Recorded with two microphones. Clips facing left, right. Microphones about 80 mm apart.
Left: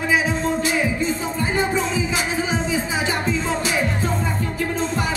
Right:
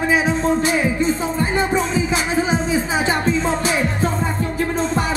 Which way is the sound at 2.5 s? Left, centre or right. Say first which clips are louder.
Right 3 dB; right.